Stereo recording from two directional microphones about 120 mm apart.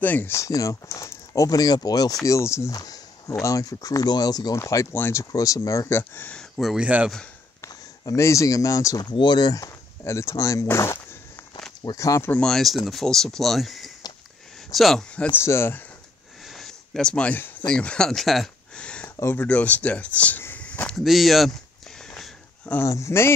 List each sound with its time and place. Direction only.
0.0 s speech: 15° left (ahead or behind); by 7.1 s 10° right (ahead or behind)
7.6 s speech: 25° left (ahead or behind)
9.1 s speech: 40° left (ahead or behind)
12.3 s speech: 5° left (ahead or behind)
15.4 s speech: 20° left (ahead or behind)
16.4 s a sound: 5° left (ahead or behind)
19.3 s speech: 10° left (ahead or behind)
21.0 s speech: centre (ahead or behind)
22.0 s a sound: 5° left (ahead or behind)
22.8 s speech: 25° left (ahead or behind)